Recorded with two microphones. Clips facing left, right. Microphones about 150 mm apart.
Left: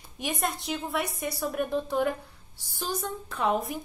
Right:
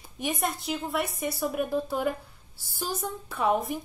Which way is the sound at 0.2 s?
Centre (ahead or behind).